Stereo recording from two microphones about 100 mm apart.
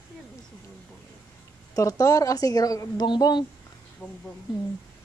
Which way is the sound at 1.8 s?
35° left (ahead or behind).